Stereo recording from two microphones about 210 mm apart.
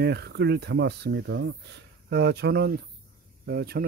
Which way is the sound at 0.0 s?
50° right (ahead or behind).